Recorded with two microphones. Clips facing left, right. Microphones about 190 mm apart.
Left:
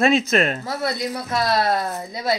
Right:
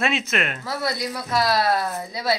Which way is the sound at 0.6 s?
25° left (ahead or behind).